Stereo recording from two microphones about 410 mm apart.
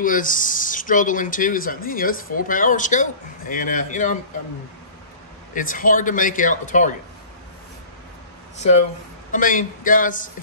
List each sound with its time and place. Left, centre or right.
0.0 s speech: centre
5.5 s speech: centre
9.3 s speech: centre